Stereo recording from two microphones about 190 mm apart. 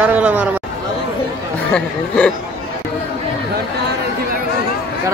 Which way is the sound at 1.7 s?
5° left (ahead or behind).